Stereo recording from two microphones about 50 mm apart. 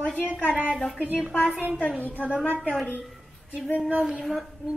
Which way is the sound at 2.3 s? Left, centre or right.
Right.